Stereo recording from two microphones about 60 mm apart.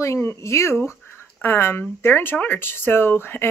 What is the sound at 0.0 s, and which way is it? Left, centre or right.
Speech, left.